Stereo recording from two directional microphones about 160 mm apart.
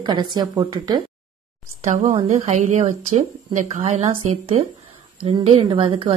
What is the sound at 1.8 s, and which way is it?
A woman's voice, 50° right (ahead or behind).